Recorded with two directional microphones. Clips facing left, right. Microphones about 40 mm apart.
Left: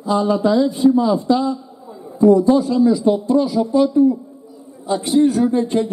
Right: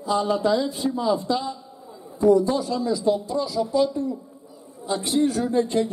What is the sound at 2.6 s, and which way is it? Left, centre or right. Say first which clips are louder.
Speech: left 9 dB; left.